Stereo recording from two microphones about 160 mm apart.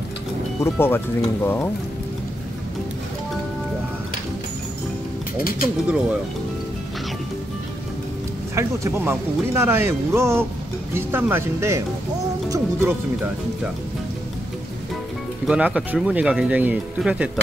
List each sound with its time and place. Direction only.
0.7 s speech: 15° left (ahead or behind)
5.4 s speech: 65° left (ahead or behind)
8.5 s speech: 15° right (ahead or behind)
15.4 s speech: 5° right (ahead or behind)